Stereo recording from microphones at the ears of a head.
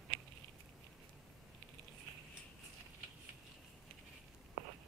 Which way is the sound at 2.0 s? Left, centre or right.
Right.